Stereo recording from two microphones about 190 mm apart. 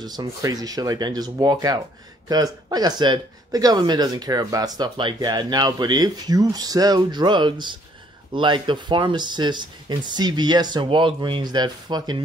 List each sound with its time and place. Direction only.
0.0 s speech: 20° right (ahead or behind)